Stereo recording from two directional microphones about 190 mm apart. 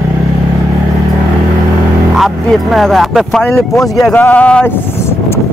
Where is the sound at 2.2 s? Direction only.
Centre (ahead or behind).